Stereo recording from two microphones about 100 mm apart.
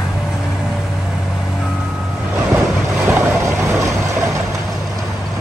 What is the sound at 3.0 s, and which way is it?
Boat, 25° right (ahead or behind).